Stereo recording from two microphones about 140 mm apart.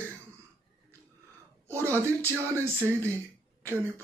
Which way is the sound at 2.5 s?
20° right (ahead or behind).